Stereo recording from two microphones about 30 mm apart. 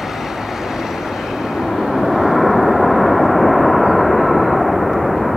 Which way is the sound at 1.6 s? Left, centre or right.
Centre.